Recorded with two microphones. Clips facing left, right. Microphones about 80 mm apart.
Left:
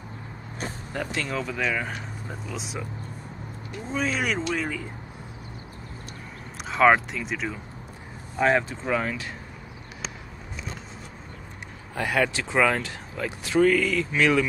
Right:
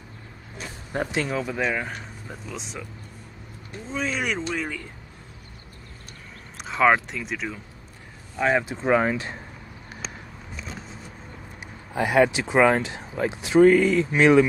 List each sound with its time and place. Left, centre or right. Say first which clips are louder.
0.9 s speech: right 4 dB; right
1.9 s speech: left 1 dB; centre
3.9 s speech: left 1 dB; centre
6.6 s speech: left 1 dB; centre
8.8 s speech: right 6 dB; right
11.9 s speech: right 5 dB; centre